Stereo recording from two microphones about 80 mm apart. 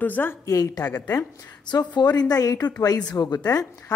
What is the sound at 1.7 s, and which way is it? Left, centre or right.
A woman's voice, left.